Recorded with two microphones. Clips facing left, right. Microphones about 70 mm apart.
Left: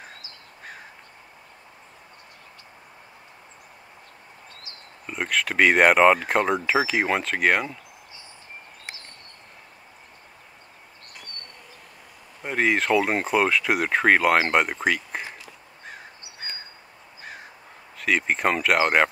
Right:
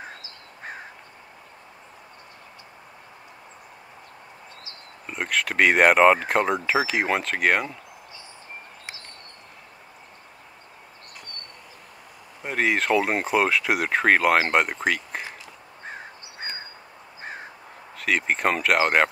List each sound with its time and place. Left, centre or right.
5.0 s speech: centre
12.4 s speech: centre
15.8 s crow: right
17.9 s speech: centre